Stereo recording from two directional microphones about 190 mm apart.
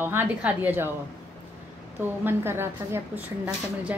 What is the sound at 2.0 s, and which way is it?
A woman's voice, 10° right (ahead or behind).